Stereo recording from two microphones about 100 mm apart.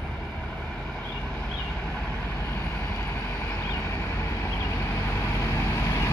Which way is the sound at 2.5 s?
25° left (ahead or behind).